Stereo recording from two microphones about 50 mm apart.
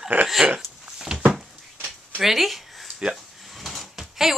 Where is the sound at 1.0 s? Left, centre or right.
Centre.